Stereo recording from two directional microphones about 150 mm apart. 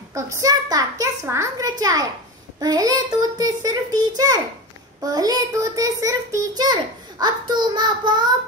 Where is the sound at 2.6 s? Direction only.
25° right (ahead or behind).